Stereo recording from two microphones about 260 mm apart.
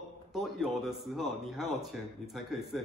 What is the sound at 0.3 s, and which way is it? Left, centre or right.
Speech, centre.